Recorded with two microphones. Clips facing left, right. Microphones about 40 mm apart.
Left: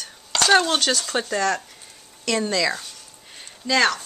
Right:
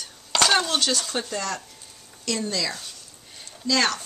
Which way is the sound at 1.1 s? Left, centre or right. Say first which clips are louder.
Left 6 dB; left.